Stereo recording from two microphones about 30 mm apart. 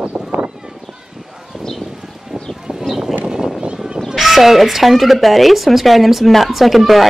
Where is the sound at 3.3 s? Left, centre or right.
Right.